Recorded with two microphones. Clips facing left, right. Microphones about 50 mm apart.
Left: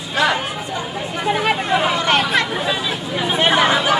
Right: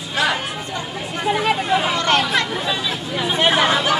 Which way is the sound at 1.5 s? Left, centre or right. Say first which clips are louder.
Left 1 dB; centre.